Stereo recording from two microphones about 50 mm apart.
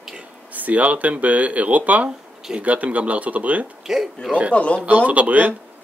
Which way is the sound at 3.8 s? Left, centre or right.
Centre.